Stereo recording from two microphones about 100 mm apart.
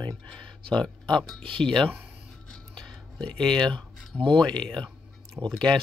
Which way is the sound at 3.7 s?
55° right (ahead or behind).